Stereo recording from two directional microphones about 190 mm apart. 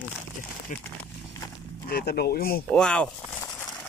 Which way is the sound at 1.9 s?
55° left (ahead or behind).